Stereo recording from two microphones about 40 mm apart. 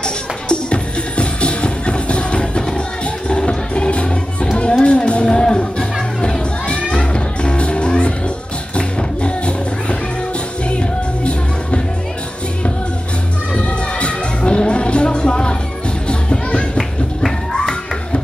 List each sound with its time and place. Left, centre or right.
0.0 s music: left
13.6 s music: left
17.5 s a sound: centre